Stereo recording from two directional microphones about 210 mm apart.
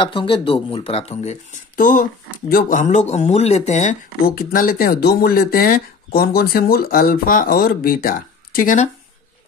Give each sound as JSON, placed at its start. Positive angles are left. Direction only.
{"t": 0.0, "sound": "speech", "side_deg": 25}